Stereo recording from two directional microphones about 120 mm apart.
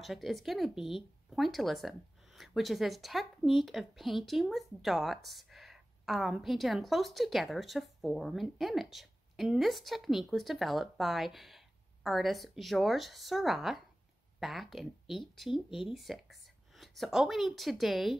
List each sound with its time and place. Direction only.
0.0 s speech: centre (ahead or behind)